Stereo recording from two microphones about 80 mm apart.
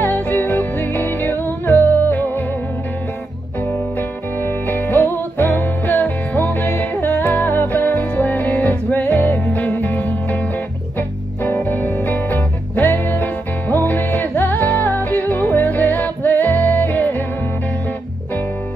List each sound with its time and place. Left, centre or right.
0.0 s music: left
4.4 s music: left